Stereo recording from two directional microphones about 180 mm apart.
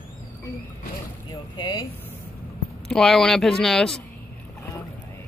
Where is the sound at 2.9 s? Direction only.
5° left (ahead or behind).